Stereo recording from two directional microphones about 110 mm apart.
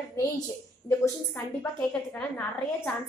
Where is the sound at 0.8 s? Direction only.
20° left (ahead or behind).